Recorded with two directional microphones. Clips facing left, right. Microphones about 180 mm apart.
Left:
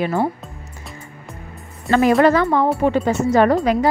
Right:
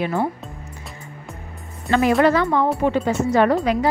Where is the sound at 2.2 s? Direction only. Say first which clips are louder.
Left 2 dB; 45° left (ahead or behind).